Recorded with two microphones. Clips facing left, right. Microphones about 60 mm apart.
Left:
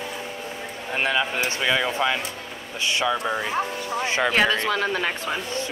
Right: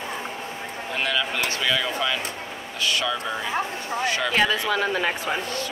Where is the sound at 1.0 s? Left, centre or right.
Left.